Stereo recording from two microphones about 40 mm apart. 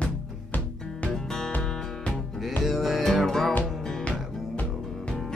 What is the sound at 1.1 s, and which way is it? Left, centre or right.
Music, centre.